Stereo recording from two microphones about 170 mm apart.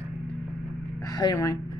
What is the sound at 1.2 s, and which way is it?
Speech, 20° left (ahead or behind).